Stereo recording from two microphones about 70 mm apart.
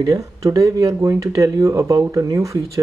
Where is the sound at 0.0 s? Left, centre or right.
Right.